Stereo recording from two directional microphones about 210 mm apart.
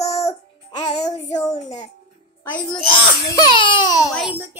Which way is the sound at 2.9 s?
20° left (ahead or behind).